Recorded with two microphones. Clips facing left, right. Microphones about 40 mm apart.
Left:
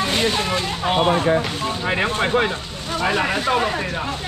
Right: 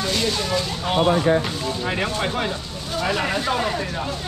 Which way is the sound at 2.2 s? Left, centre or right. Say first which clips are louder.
Left 5 dB; left.